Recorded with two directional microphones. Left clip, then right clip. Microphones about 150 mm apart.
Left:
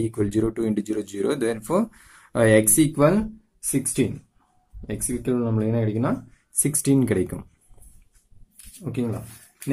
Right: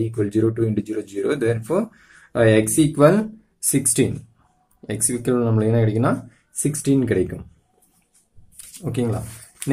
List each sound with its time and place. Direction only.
0.0 s speech: 40° left (ahead or behind)
2.9 s speech: 20° left (ahead or behind)
6.6 s speech: 35° left (ahead or behind)
8.8 s speech: 15° left (ahead or behind)